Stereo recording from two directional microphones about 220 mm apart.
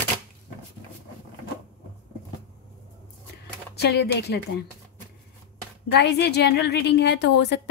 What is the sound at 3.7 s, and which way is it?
Speech, 50° left (ahead or behind).